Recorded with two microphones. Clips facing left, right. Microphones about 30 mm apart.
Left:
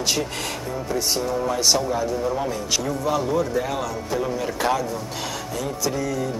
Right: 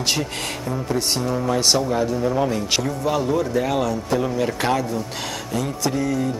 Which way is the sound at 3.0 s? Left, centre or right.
Centre.